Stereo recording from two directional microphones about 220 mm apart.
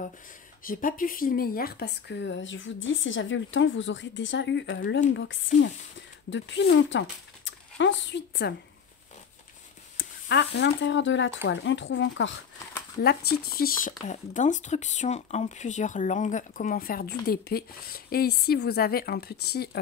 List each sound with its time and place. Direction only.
0.7 s speech: 40° left (ahead or behind)
9.9 s speech: 50° left (ahead or behind)
13.0 s speech: 45° left (ahead or behind)